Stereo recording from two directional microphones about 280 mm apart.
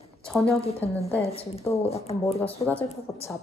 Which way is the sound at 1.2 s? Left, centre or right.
Left.